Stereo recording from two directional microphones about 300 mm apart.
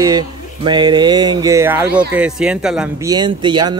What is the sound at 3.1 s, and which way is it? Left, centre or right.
Speech, centre.